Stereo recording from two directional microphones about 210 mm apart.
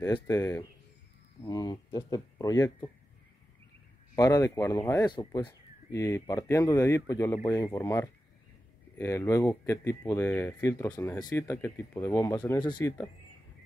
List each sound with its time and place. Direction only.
0.0 s speech: 15° left (ahead or behind)
4.1 s speech: 15° left (ahead or behind)